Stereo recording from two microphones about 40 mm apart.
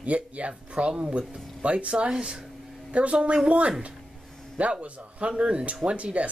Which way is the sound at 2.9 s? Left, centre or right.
Right.